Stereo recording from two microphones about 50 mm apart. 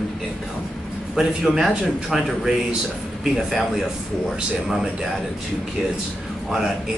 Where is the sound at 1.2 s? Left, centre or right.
Centre.